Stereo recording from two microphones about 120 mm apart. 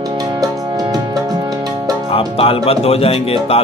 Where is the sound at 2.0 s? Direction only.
55° left (ahead or behind).